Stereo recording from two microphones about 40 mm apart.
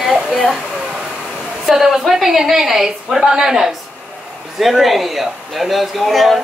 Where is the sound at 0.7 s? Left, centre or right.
Centre.